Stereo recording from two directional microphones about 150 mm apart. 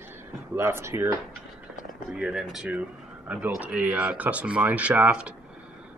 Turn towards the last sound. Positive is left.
turn(degrees=-10)  # may be behind; listen again after turning